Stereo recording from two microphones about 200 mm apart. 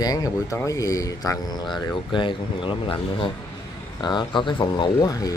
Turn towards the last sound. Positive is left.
turn(degrees=20)  # may be behind; listen again after turning